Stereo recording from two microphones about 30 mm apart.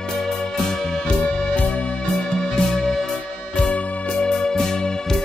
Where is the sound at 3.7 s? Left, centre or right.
Left.